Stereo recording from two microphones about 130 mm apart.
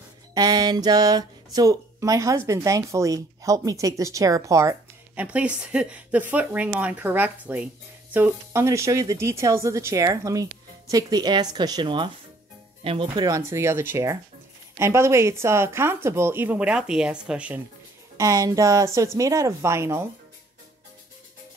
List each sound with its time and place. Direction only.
0.3 s speech: 30° right (ahead or behind)
5.1 s speech: 10° right (ahead or behind); by 13.3 s 40° right (ahead or behind)
13.3 s speech: 20° right (ahead or behind)
18.1 s speech: 25° right (ahead or behind)